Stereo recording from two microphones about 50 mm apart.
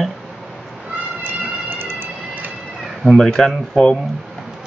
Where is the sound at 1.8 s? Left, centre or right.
Right.